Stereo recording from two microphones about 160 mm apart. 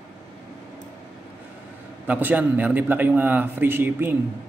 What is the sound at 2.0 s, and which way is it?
A man's voice, 10° right (ahead or behind).